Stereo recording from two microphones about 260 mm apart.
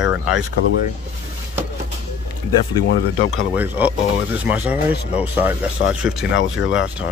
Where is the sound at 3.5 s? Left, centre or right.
Centre.